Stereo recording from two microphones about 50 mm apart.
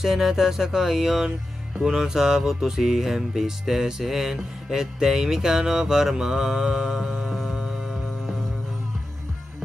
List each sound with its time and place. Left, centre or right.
0.0 s music: centre